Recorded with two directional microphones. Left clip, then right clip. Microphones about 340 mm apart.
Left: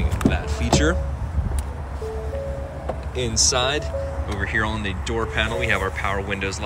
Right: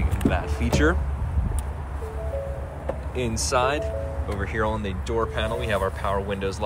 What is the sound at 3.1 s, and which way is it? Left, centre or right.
Speech, centre.